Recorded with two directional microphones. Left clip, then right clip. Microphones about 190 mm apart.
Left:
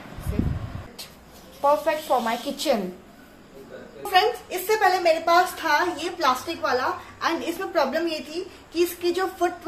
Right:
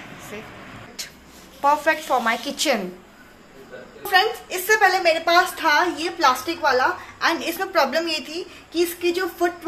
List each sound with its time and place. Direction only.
1.6 s a woman's voice: centre (ahead or behind)
4.0 s a woman's voice: centre (ahead or behind)
5.0 s a woman's voice: 25° right (ahead or behind)
7.2 s a woman's voice: 5° right (ahead or behind)
8.7 s a woman's voice: 25° right (ahead or behind)